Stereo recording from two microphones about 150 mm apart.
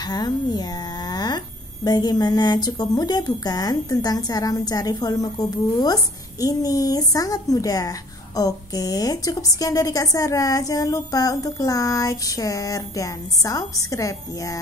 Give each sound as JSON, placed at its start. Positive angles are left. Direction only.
{"t": 0.0, "sound": "a woman's voice", "side_deg": 25}